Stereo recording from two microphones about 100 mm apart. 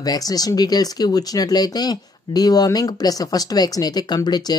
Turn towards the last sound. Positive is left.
turn(degrees=40)  # may be behind; listen again after turning